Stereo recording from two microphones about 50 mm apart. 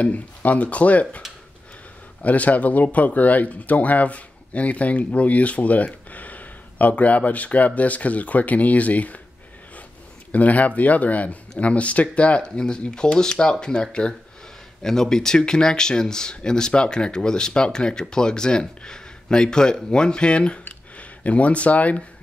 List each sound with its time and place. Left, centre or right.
0.0 s speech: left
2.2 s speech: left
10.3 s speech: left